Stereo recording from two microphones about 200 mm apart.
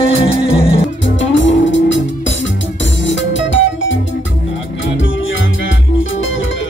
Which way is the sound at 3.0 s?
65° left (ahead or behind).